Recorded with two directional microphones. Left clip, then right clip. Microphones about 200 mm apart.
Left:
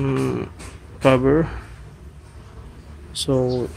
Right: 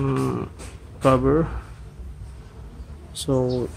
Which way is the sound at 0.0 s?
10° right (ahead or behind).